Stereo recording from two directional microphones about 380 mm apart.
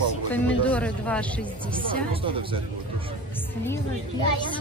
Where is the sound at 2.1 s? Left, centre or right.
Centre.